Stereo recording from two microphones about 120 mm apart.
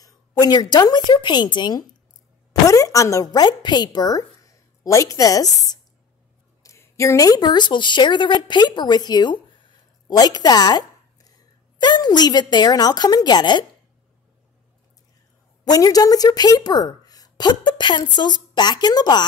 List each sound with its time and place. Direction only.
0.0 s a woman's voice: 35° left (ahead or behind)
2.6 s a woman's voice: 25° left (ahead or behind)
15.6 s a woman's voice: 30° left (ahead or behind)